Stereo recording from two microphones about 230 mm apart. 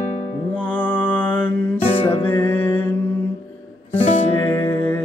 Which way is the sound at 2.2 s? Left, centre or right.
Centre.